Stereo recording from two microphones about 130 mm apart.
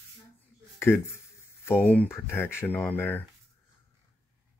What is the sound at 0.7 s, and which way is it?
Speech, 20° left (ahead or behind).